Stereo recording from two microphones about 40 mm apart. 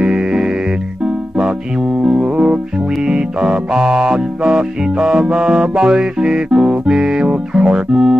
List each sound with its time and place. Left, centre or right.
0.0 s music: right